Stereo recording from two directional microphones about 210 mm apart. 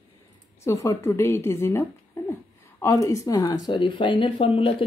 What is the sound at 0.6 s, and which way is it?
A woman's voice, 15° left (ahead or behind).